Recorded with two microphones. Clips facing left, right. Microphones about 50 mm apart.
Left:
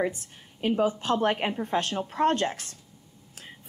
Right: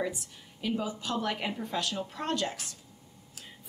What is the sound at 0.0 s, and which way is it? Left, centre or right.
A woman's voice, left.